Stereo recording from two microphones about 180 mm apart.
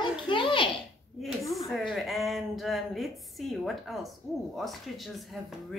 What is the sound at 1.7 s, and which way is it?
A woman's voice, centre (ahead or behind).